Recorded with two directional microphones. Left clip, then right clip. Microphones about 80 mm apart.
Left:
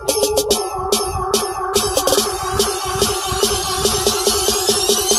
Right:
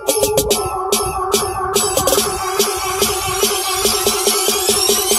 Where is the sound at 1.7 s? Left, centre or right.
Left.